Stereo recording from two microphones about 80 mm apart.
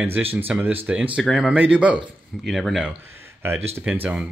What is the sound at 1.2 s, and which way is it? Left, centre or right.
Speech, centre.